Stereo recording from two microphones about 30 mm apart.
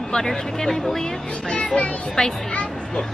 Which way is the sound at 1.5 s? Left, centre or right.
Left.